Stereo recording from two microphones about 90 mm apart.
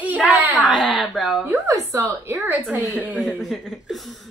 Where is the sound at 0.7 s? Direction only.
Centre (ahead or behind).